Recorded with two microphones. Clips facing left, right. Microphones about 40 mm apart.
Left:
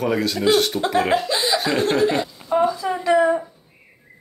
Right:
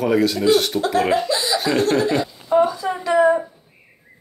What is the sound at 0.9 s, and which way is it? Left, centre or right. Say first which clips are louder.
Speech: right 1 dB; centre.